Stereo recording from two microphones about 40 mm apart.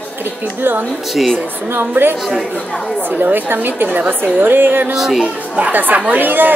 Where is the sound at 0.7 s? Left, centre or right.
Right.